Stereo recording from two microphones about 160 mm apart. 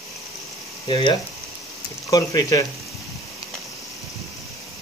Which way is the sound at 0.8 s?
25° left (ahead or behind).